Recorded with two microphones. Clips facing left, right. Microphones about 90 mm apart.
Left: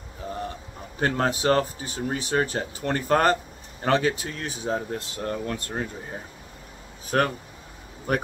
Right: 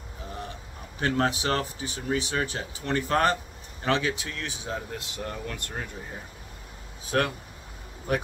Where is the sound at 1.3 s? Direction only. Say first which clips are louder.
Left 6 dB; 40° left (ahead or behind).